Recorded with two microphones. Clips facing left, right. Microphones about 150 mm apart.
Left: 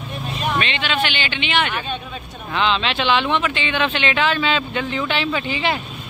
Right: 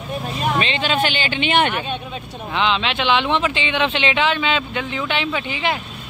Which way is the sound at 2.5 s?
15° right (ahead or behind).